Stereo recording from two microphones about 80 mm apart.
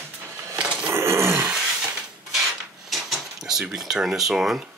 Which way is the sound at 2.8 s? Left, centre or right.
Centre.